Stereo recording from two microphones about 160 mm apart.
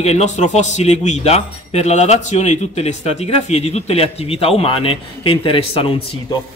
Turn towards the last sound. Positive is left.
turn(degrees=35)  # may be behind; listen again after turning